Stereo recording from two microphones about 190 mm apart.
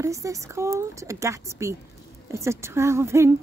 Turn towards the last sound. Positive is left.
turn(degrees=-15)  # may be behind; listen again after turning